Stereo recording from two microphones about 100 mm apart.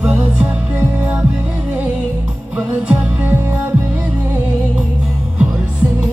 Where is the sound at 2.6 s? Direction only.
15° right (ahead or behind).